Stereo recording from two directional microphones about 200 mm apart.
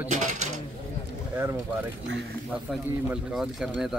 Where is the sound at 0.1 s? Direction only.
40° right (ahead or behind).